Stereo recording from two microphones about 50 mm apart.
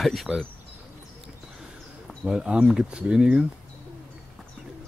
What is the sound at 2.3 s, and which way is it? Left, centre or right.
Speech, centre.